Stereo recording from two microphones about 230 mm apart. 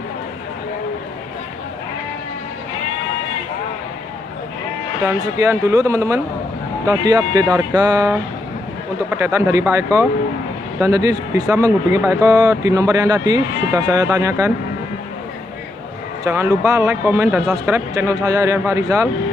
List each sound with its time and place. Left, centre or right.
5.0 s speech: centre
9.1 s speech: centre
16.3 s speech: centre